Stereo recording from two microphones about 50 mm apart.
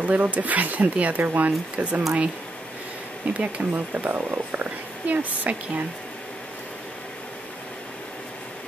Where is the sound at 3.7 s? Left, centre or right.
Right.